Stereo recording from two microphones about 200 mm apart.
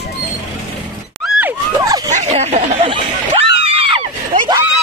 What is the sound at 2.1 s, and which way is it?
Speech, 30° right (ahead or behind).